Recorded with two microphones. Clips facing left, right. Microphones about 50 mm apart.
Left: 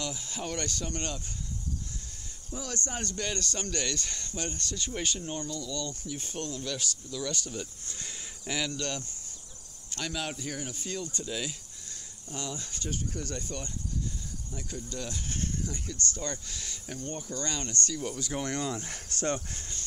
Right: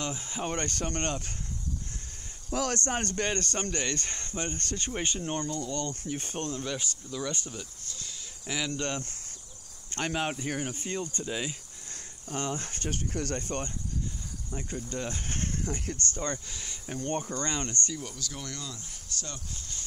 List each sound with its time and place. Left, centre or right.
0.0 s speech: right
0.7 s speech: right
2.7 s speech: right
8.5 s speech: centre
8.7 s speech: right
11.9 s speech: right
14.5 s speech: right
16.4 s speech: centre
17.0 s speech: right
18.1 s speech: left